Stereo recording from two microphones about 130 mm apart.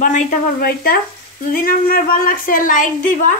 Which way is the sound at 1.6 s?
90° left.